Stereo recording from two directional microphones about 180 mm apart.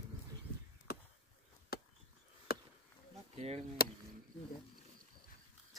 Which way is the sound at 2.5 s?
55° left (ahead or behind).